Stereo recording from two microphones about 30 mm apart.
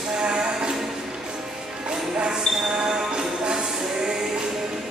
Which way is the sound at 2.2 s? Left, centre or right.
Right.